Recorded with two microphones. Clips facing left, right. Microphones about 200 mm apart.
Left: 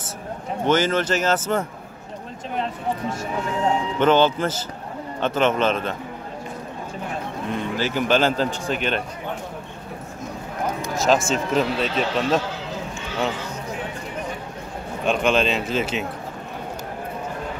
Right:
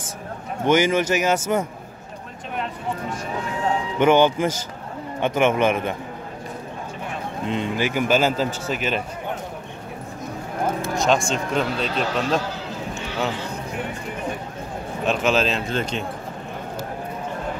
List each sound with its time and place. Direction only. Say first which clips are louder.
0.7 s speech: right 2 dB; 10° right (ahead or behind)
2.5 s speech: left 2 dB; 30° left (ahead or behind)
4.0 s speech: right 2 dB; 10° right (ahead or behind)
7.5 s speech: right 1 dB; 15° right (ahead or behind)
11.0 s speech: left 2 dB; 5° left (ahead or behind)
15.0 s speech: left 1 dB; centre (ahead or behind)